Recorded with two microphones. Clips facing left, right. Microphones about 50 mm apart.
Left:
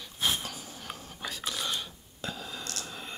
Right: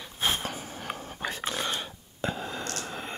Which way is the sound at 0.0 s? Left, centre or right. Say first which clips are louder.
Right 2 dB; right.